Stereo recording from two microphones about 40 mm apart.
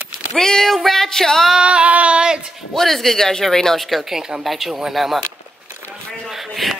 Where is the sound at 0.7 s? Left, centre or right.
Centre.